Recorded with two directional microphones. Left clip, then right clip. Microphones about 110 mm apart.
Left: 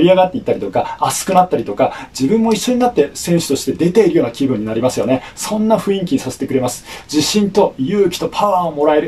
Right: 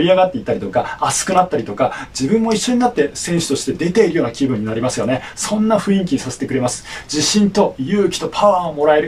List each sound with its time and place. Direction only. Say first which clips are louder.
0.0 s speech: left 2 dB; 35° left (ahead or behind)